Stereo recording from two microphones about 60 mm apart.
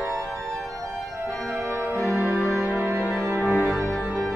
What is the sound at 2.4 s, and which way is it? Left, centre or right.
Music, centre.